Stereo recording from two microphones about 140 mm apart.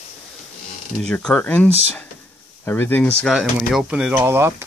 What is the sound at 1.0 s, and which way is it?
Speech, 10° left (ahead or behind).